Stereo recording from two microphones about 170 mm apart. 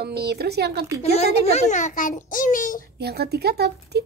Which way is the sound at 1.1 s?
35° left (ahead or behind).